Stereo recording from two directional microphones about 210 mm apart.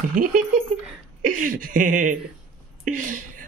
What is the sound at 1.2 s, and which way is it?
Speech, 40° right (ahead or behind).